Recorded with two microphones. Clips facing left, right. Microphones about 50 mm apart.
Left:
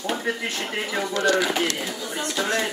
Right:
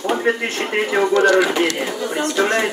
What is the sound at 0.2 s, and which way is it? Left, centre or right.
Speech, right.